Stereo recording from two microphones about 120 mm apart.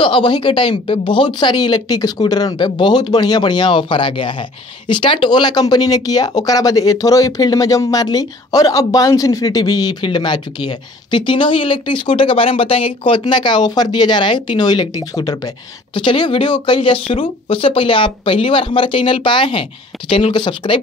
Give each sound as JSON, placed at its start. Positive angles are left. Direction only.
{"t": 0.0, "sound": "speech", "side_deg": 40}